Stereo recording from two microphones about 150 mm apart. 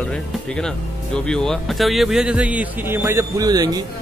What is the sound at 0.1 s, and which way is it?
Speech, 5° left (ahead or behind).